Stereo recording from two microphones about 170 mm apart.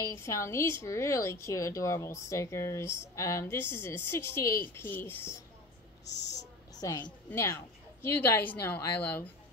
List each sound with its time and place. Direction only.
0.0 s a woman's voice: 15° left (ahead or behind)
6.0 s speech: 90° left
6.7 s a woman's voice: 20° left (ahead or behind)